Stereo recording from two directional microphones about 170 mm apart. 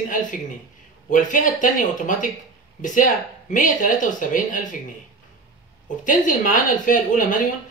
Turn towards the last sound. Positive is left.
turn(degrees=50)  # may be behind; listen again after turning